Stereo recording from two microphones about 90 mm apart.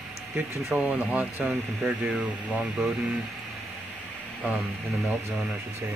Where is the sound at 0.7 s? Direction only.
15° right (ahead or behind).